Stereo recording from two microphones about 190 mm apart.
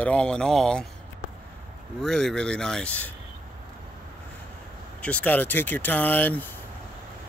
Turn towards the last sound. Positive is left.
turn(degrees=10)  # may be behind; listen again after turning